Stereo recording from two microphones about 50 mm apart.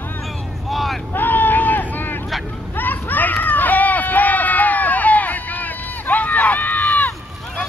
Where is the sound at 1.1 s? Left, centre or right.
Left.